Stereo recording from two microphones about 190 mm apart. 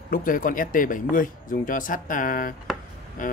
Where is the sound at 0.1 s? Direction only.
45° left (ahead or behind).